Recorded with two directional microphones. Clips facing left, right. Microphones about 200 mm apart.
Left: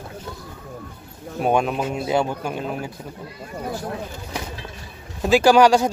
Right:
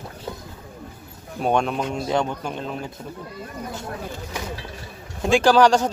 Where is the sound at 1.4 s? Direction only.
5° left (ahead or behind).